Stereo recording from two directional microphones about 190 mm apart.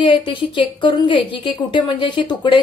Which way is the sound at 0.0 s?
25° left (ahead or behind).